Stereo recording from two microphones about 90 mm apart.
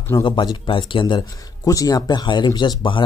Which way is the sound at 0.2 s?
65° left (ahead or behind).